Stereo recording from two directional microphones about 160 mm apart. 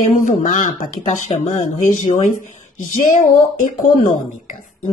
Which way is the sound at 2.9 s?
50° left (ahead or behind).